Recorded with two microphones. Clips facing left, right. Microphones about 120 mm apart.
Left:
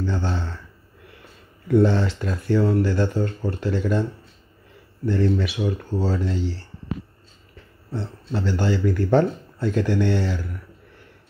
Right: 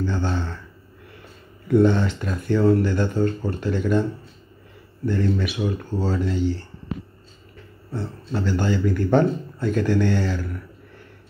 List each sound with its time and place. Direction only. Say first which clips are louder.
0.0 s speech: right 1 dB; 30° left (ahead or behind)
1.7 s speech: right 1 dB; 30° left (ahead or behind)
5.0 s speech: left 1 dB; 30° left (ahead or behind)
7.9 s speech: even; 25° left (ahead or behind)